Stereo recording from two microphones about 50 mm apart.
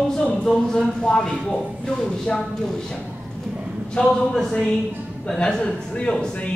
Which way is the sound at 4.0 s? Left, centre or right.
Centre.